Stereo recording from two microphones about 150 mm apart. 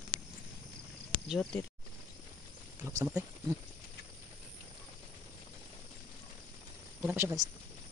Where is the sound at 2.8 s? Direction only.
20° right (ahead or behind).